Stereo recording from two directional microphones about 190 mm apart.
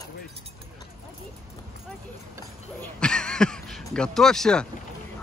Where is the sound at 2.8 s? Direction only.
5° left (ahead or behind).